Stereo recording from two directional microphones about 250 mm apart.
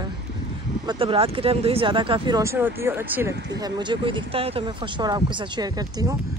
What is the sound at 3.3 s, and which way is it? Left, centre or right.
Speech, right.